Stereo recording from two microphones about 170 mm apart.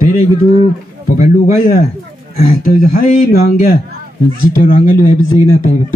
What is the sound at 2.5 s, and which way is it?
A man's voice, 55° left (ahead or behind).